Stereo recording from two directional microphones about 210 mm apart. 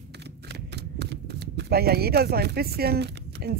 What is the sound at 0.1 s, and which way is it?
Speech, 50° right (ahead or behind).